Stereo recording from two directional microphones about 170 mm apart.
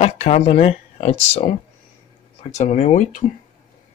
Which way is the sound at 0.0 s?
40° left (ahead or behind).